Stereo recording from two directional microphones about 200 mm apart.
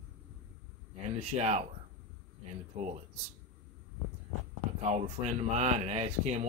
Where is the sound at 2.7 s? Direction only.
35° right (ahead or behind).